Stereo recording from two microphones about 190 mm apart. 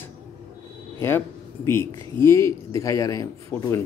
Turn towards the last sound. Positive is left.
turn(degrees=15)  # may be behind; listen again after turning